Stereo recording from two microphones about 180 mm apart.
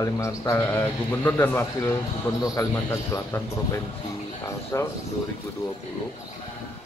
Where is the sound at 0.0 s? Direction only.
15° left (ahead or behind).